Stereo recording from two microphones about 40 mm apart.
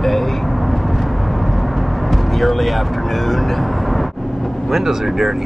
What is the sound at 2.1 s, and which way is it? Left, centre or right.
Speech, centre.